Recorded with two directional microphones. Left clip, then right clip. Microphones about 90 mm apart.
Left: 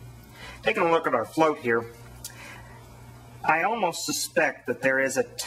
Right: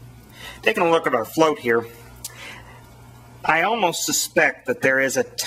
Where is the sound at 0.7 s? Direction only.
45° right (ahead or behind).